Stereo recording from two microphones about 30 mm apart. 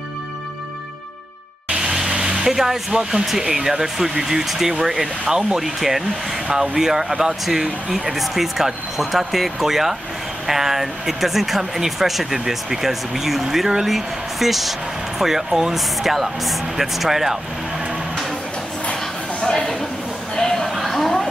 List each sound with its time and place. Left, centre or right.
2.0 s vehicle: right
2.4 s speech: centre
5.6 s speech: centre
6.5 s speech: right
6.8 s speech: centre
19.4 s a sound: left
20.5 s a sound: centre